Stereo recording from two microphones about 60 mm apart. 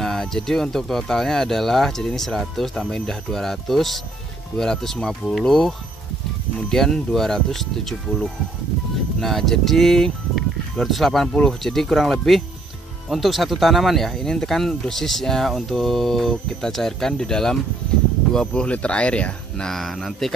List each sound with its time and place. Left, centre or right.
0.0 s speech: centre
19.8 s speech: centre